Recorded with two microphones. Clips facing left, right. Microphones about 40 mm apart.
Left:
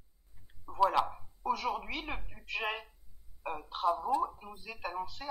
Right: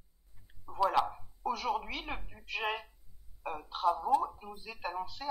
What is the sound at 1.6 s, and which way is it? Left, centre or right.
Speech, centre.